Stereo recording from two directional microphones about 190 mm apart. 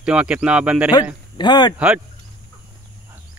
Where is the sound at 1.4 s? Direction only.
20° left (ahead or behind).